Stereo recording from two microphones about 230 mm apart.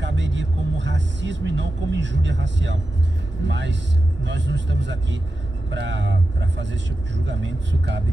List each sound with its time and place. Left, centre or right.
0.0 s music: right
3.4 s speech: right